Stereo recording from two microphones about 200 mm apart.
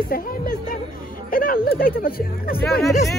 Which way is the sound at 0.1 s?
45° left (ahead or behind).